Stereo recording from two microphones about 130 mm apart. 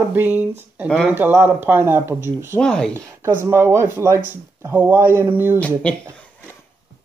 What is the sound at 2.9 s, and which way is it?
Speech, 20° right (ahead or behind).